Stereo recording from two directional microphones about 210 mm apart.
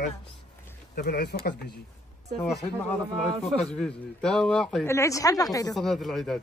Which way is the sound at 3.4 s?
Centre (ahead or behind).